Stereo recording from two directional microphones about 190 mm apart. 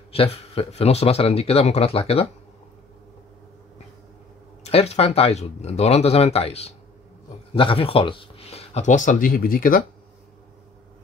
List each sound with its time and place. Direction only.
0.1 s speech: 30° left (ahead or behind)
4.6 s speech: 35° left (ahead or behind)